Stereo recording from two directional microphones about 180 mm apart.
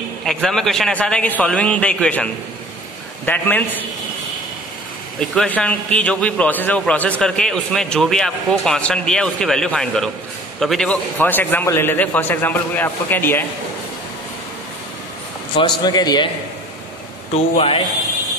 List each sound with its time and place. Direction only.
0.2 s a man's voice: centre (ahead or behind)
5.2 s a man's voice: 5° left (ahead or behind)
15.5 s speech: 25° left (ahead or behind)
17.3 s a man's voice: 30° left (ahead or behind)